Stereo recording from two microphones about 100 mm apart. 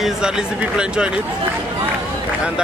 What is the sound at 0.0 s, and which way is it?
Speech, 10° right (ahead or behind).